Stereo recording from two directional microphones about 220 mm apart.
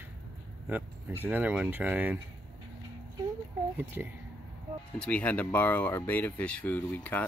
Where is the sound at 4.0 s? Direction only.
10° right (ahead or behind).